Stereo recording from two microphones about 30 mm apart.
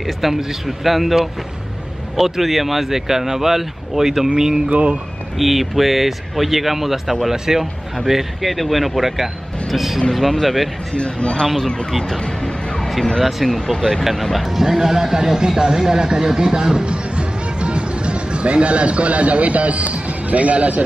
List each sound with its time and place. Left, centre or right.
0.0 s speech: centre
4.6 s speech: right
5.4 s speech: centre
11.0 s a man's voice: left
11.4 s speech: centre
12.2 s music: left
13.5 s speech: centre
14.6 s a man's voice: centre; by 20.8 s right